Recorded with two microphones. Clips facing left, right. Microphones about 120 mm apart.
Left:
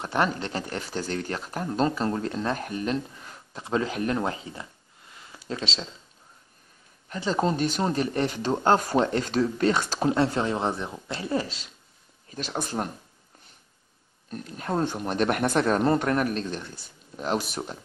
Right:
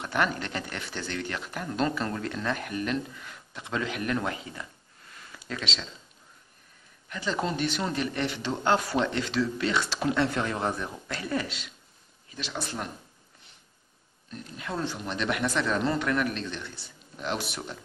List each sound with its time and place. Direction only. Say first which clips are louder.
0.0 s speech: left 2 dB; 30° left (ahead or behind)
7.1 s speech: left 5 dB; 35° left (ahead or behind)
12.3 s speech: left 4 dB; 45° left (ahead or behind)
14.3 s speech: left 6 dB; 45° left (ahead or behind)